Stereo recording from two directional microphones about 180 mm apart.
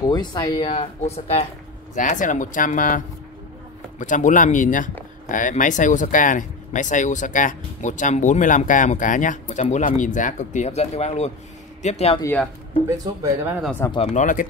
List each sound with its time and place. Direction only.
0.0 s speech: 25° left (ahead or behind)
2.0 s speech: 45° left (ahead or behind)
4.0 s speech: 45° left (ahead or behind)
13.0 s speech: 20° right (ahead or behind)
13.6 s speech: 5° left (ahead or behind)
13.8 s speech: 30° left (ahead or behind)
14.1 s speech: 45° left (ahead or behind)